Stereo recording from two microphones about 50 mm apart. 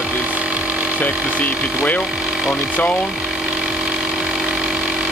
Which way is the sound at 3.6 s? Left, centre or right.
Right.